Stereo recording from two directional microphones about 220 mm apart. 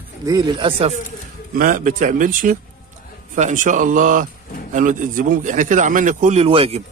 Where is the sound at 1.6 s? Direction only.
40° right (ahead or behind).